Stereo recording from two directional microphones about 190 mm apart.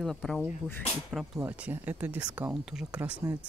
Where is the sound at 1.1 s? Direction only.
Centre (ahead or behind).